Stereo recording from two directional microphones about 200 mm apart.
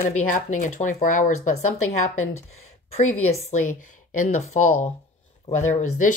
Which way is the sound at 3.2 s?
35° left (ahead or behind).